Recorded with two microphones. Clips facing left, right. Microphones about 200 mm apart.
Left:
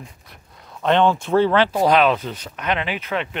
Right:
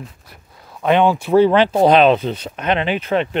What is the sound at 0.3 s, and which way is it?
Speech, 5° right (ahead or behind).